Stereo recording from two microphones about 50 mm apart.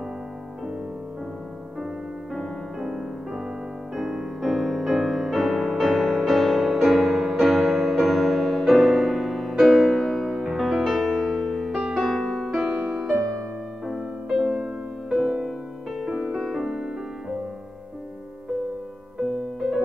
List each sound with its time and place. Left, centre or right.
2.3 s music: centre
12.4 s music: centre
14.5 s music: centre
16.7 s music: centre